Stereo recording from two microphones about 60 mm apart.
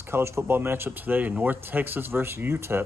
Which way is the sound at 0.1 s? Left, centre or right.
Right.